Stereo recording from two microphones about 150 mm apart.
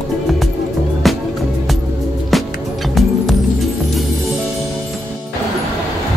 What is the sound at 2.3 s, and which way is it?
Music, centre (ahead or behind).